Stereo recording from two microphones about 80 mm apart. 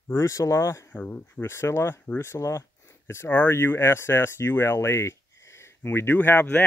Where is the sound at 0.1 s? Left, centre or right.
Left.